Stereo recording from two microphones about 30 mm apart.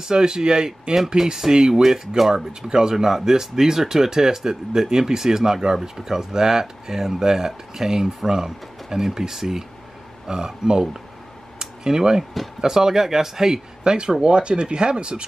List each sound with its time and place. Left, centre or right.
0.0 s speech: right
0.9 s speech: centre
2.3 s speech: right
2.9 s speech: centre
13.8 s speech: right